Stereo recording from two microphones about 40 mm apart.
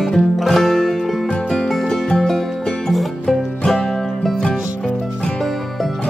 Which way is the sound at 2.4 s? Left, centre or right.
Centre.